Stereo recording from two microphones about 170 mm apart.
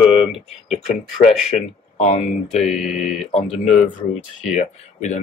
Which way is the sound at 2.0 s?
40° left (ahead or behind).